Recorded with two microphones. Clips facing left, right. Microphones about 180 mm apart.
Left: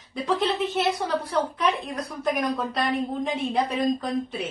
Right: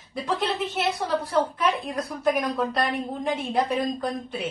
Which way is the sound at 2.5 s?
Centre (ahead or behind).